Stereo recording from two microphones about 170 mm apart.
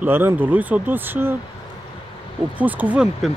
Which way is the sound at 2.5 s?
10° right (ahead or behind).